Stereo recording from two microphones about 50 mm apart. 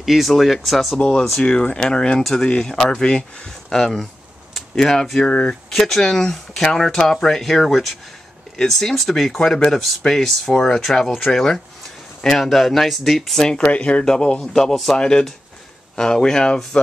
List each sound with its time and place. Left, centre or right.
0.0 s speech: centre
0.9 s speech: centre
5.7 s speech: centre
13.6 s speech: left